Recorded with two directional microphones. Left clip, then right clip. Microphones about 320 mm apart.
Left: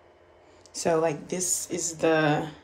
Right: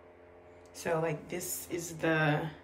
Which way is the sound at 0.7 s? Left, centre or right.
Centre.